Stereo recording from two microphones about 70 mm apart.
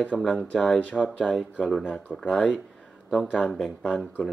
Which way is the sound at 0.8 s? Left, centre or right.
Centre.